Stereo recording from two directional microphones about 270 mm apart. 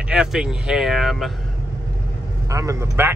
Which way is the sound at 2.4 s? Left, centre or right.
Centre.